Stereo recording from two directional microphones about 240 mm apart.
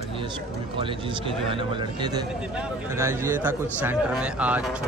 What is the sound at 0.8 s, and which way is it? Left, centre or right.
Speech, right.